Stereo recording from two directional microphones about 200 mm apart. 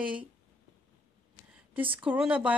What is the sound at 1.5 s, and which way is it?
Speech, 5° right (ahead or behind).